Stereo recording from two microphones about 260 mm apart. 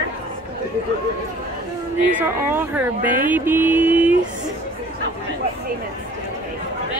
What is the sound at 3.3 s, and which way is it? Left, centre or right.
Mantra, centre.